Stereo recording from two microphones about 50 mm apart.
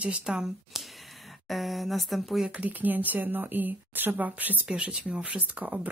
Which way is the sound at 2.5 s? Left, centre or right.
Right.